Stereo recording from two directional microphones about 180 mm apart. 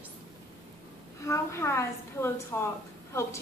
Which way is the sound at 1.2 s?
15° left (ahead or behind).